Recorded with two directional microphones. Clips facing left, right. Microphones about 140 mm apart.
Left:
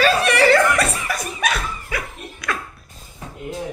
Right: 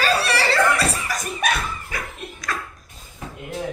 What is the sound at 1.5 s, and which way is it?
Dog, 45° right (ahead or behind).